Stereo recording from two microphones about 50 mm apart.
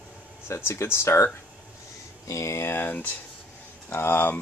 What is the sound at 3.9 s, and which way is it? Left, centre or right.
Speech, left.